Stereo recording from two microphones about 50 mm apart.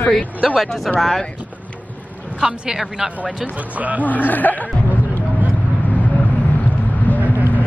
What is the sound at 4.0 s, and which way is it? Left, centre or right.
Speech, left.